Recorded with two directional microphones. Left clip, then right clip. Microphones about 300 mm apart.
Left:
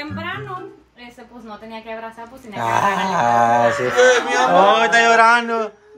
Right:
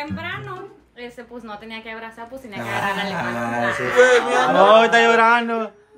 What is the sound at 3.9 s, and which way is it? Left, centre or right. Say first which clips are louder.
Speech: right 2 dB; right.